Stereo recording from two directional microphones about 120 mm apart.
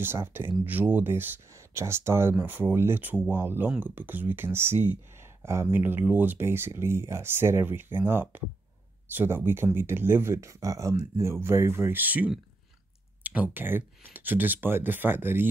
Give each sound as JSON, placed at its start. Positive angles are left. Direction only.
{"t": 0.0, "sound": "speech", "side_deg": -20}